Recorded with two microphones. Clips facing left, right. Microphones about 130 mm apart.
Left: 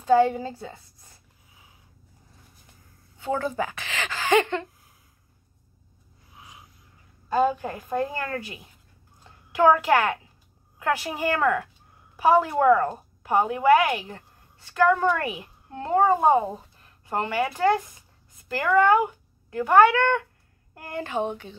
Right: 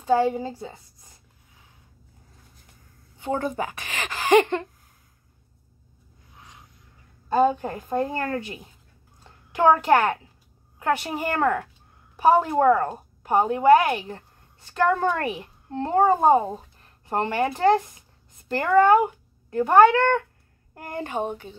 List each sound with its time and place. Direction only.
0.0 s a woman's voice: 15° right (ahead or behind)
3.2 s a woman's voice: 20° right (ahead or behind)
6.3 s a sound: 10° left (ahead or behind)
7.2 s a woman's voice: 25° right (ahead or behind)
9.6 s a woman's voice: 25° right (ahead or behind)